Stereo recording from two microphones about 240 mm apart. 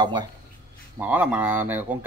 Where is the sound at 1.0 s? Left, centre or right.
Centre.